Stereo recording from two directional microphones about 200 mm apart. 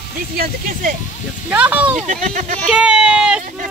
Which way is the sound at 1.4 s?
5° right (ahead or behind).